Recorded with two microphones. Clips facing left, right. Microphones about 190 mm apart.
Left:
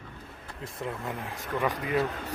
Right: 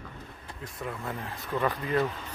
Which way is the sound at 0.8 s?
15° left (ahead or behind).